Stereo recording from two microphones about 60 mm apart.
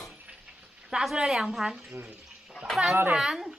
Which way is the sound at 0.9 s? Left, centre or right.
Centre.